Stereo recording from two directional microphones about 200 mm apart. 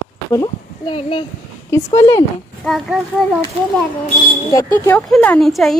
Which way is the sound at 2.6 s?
Centre (ahead or behind).